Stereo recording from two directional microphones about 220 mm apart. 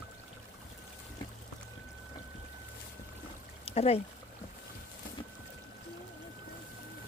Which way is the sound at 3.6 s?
30° left (ahead or behind).